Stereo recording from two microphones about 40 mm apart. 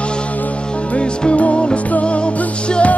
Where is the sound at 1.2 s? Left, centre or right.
Left.